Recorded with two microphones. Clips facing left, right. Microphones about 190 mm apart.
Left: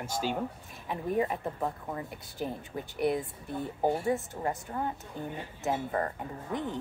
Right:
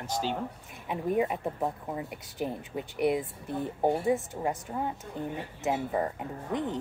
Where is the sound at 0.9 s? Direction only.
10° right (ahead or behind).